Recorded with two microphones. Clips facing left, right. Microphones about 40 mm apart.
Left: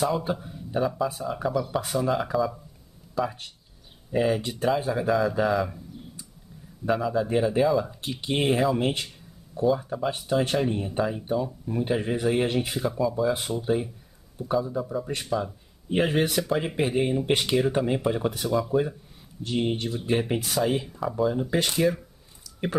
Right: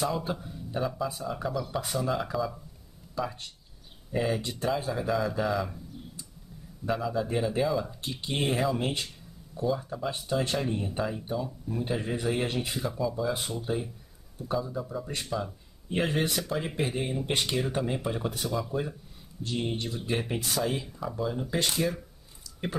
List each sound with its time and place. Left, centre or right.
0.3 s speech: centre
6.9 s speech: centre